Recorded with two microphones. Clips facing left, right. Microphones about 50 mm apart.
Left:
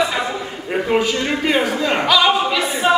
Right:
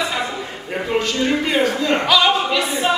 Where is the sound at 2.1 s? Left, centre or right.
Centre.